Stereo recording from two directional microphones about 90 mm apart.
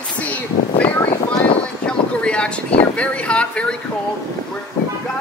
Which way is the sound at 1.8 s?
10° left (ahead or behind).